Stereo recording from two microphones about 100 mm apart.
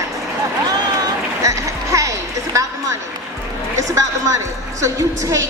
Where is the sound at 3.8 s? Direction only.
30° right (ahead or behind).